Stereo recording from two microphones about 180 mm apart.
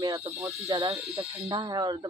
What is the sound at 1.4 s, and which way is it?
Speech, 20° right (ahead or behind).